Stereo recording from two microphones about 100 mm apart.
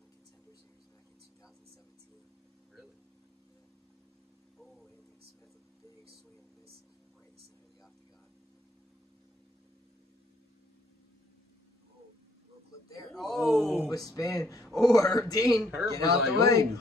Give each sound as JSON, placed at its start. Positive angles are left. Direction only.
{"t": 4.6, "sound": "a sound", "side_deg": 0}
{"t": 13.1, "sound": "speech", "side_deg": 0}
{"t": 13.8, "sound": "speech", "side_deg": 35}
{"t": 14.6, "sound": "speech", "side_deg": 0}
{"t": 14.9, "sound": "speech", "side_deg": 35}